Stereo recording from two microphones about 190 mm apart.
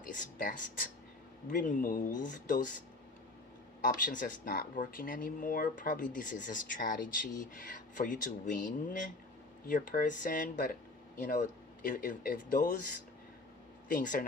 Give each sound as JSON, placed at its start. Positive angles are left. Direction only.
{"t": 0.0, "sound": "speech", "side_deg": 45}
{"t": 3.8, "sound": "speech", "side_deg": 45}
{"t": 13.8, "sound": "speech", "side_deg": 45}